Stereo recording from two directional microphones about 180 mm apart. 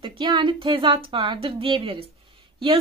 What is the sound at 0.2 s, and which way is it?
A woman's voice, 25° right (ahead or behind).